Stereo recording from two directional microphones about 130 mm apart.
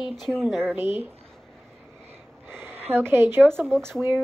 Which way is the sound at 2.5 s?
15° right (ahead or behind).